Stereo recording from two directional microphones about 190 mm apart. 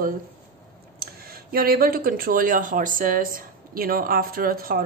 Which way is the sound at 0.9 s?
50° right (ahead or behind).